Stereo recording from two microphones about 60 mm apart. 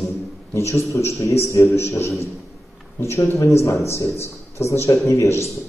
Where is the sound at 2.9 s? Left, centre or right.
Left.